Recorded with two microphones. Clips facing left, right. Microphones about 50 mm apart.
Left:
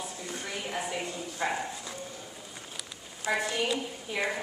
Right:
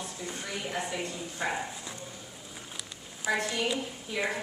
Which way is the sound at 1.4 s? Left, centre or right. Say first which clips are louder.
Left 1 dB; centre.